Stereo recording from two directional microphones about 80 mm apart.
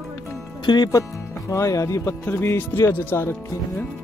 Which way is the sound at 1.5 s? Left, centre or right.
Left.